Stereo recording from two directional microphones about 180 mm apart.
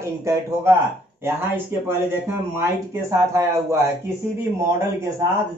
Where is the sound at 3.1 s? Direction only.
15° right (ahead or behind).